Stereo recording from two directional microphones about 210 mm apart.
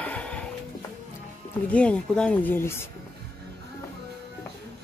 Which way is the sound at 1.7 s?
5° left (ahead or behind).